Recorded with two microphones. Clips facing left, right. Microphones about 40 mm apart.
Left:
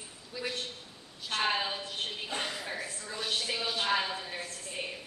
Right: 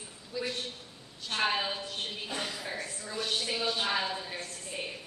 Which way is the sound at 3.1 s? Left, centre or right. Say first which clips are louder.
Right 1 dB; centre.